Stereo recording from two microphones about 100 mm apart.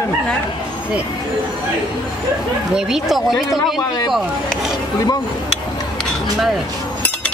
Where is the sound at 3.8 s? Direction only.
40° left (ahead or behind).